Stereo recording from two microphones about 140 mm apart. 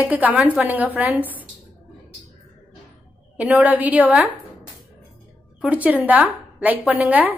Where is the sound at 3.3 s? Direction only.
10° right (ahead or behind).